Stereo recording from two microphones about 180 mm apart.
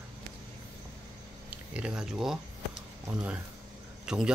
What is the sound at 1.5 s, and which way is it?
Speech, 5° right (ahead or behind).